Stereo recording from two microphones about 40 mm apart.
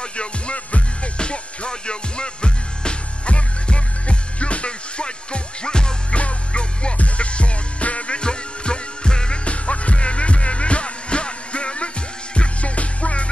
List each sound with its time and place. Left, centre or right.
0.2 s music: left